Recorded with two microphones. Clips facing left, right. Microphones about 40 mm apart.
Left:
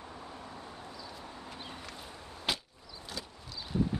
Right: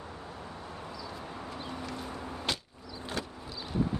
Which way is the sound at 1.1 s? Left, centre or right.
Right.